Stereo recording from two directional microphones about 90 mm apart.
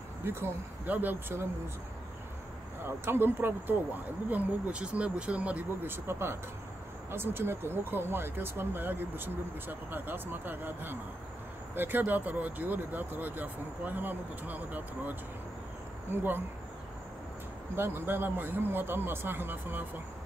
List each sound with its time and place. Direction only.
0.2 s speech: 25° right (ahead or behind)
2.8 s speech: 25° right (ahead or behind)
17.7 s speech: 25° right (ahead or behind)